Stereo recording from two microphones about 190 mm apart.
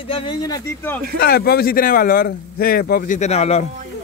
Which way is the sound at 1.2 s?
50° left (ahead or behind).